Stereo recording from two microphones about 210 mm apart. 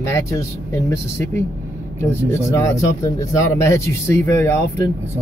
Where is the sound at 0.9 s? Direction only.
10° left (ahead or behind).